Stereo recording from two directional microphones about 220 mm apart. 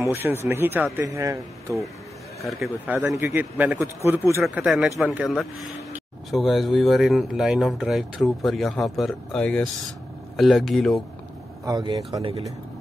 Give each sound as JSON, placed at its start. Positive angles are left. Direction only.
{"t": 0.0, "sound": "a man's voice", "side_deg": -10}
{"t": 11.6, "sound": "speech", "side_deg": -20}